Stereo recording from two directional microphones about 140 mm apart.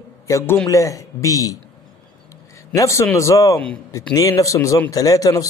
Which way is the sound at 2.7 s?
20° left (ahead or behind).